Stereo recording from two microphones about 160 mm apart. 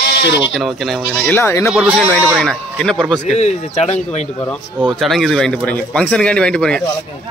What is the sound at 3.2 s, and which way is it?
Speech, 45° left (ahead or behind).